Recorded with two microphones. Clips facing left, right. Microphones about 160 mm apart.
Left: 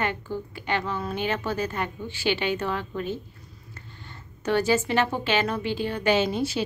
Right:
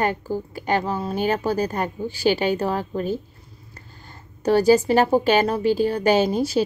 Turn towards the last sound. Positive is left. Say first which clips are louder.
# right 5 dB
turn(degrees=-40)  # may be behind; listen again after turning